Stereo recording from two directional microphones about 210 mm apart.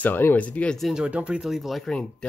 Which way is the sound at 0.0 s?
10° left (ahead or behind).